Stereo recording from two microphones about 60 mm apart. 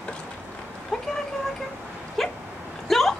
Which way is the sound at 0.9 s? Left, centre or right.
Centre.